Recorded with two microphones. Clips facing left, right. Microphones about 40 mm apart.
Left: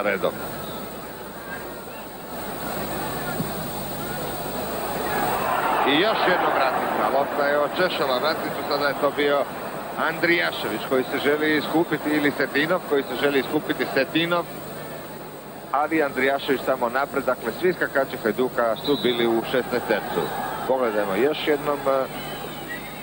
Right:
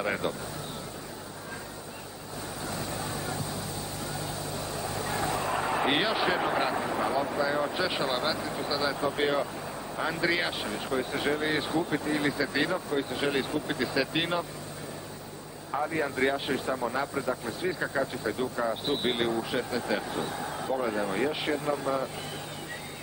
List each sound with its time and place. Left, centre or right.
0.0 s speech: left
2.6 s a sound: left
4.1 s speech: left
15.7 s speech: left